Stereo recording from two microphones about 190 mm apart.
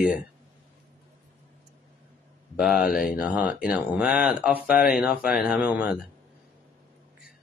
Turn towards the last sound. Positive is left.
turn(degrees=-5)  # may be behind; listen again after turning